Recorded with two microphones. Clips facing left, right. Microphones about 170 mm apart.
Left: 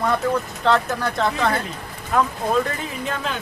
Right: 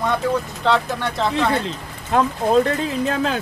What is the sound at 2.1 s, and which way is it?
Speech, 30° right (ahead or behind).